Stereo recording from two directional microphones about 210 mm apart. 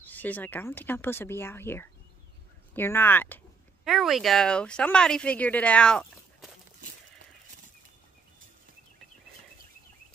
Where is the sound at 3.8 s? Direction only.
Centre (ahead or behind).